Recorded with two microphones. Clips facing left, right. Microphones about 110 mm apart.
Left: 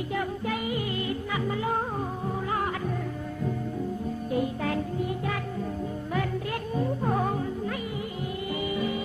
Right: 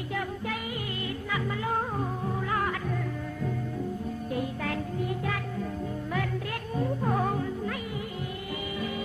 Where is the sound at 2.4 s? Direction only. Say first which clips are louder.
Left 1 dB; 25° left (ahead or behind).